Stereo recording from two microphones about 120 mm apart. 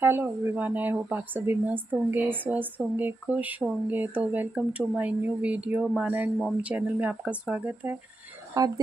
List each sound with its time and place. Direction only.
0.0 s a woman's voice: 20° right (ahead or behind)
8.6 s speech: 30° right (ahead or behind)